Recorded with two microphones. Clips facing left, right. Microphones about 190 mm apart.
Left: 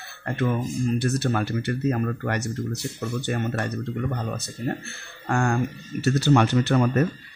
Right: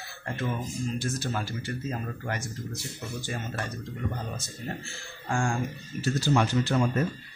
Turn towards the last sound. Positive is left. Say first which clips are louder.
# left 5 dB
turn(degrees=65)  # may be behind; listen again after turning